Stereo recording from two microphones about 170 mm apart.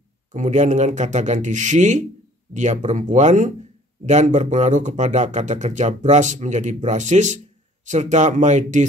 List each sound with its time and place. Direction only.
0.3 s a man's voice: 45° right (ahead or behind)